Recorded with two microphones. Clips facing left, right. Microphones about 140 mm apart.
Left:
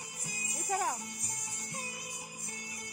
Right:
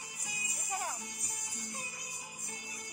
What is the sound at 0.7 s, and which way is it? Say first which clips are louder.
Music: left 6 dB; 90° left.